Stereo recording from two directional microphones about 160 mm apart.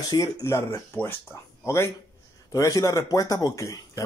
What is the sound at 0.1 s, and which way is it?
A man's voice, 25° left (ahead or behind).